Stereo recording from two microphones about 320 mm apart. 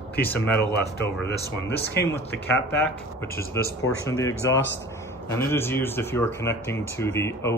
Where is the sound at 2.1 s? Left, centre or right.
Centre.